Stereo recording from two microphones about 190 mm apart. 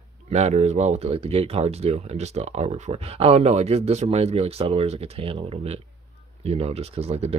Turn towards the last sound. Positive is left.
turn(degrees=-35)  # may be behind; listen again after turning